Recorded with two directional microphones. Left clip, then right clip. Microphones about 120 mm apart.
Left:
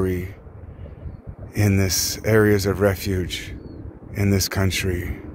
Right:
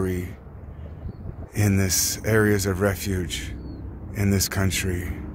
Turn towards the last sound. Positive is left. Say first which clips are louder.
# left 3 dB
turn(degrees=40)  # may be behind; listen again after turning